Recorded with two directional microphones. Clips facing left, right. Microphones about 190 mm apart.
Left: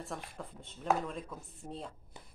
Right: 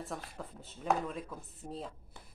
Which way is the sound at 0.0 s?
Centre (ahead or behind).